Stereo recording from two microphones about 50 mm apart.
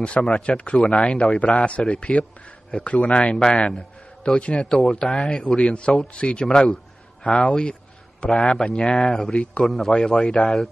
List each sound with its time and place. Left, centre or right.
0.2 s speech: centre
6.4 s speech: centre
8.5 s speech: centre
9.3 s speech: left
9.7 s a man's voice: centre